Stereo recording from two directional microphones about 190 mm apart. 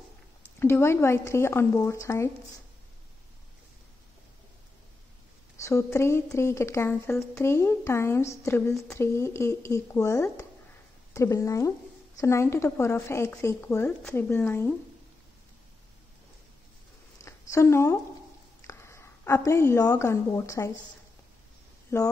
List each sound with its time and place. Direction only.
0.6 s speech: 10° left (ahead or behind)
5.6 s speech: 15° left (ahead or behind)
17.2 s a sound: 15° left (ahead or behind)
18.6 s a woman's voice: 15° left (ahead or behind)
21.9 s speech: 15° left (ahead or behind)